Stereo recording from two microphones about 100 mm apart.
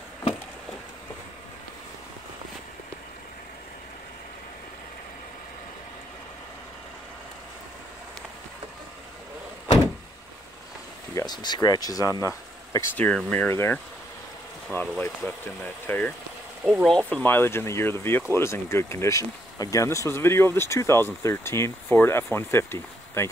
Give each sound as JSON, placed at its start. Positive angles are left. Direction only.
{"t": 11.2, "sound": "speech", "side_deg": 45}
{"t": 12.2, "sound": "a sound", "side_deg": 30}
{"t": 12.9, "sound": "speech", "side_deg": 15}
{"t": 13.5, "sound": "speech", "side_deg": 25}
{"t": 17.1, "sound": "speech", "side_deg": 20}